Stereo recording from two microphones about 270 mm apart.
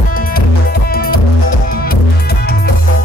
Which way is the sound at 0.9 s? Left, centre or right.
Left.